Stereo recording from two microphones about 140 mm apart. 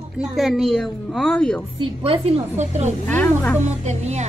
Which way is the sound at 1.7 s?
40° right (ahead or behind).